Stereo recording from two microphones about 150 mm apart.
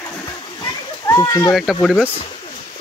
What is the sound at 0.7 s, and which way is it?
Children playing, 20° left (ahead or behind).